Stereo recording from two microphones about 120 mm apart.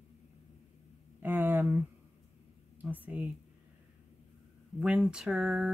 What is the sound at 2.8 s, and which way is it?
Speech, 15° right (ahead or behind).